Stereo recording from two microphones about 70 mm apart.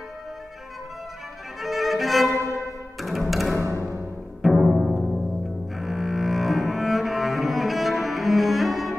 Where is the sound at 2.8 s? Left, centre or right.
Centre.